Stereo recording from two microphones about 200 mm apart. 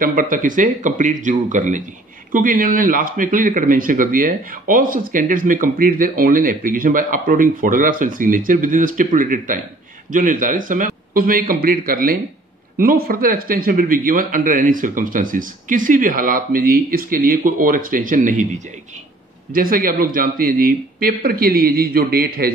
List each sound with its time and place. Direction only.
0.0 s speech: 45° right (ahead or behind)